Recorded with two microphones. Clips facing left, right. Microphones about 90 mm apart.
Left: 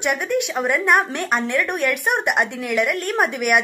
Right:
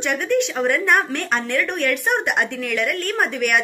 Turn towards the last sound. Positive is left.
turn(degrees=10)  # may be behind; listen again after turning